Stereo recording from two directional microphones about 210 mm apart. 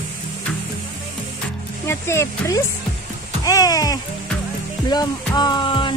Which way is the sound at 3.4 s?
15° left (ahead or behind).